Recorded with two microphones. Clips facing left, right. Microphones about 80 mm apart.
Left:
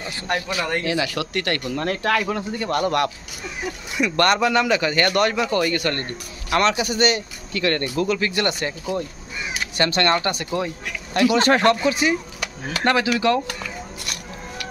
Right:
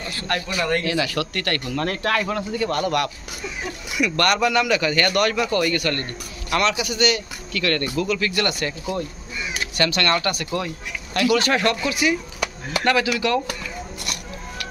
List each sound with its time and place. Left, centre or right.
0.0 s speech: centre
2.8 s a man's voice: left
7.5 s a man's voice: left
9.8 s a man's voice: left